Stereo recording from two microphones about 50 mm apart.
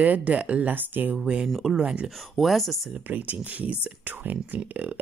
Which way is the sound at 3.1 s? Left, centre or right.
Right.